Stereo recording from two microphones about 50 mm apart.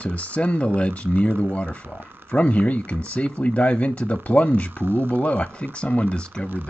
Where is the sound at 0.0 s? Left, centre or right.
Left.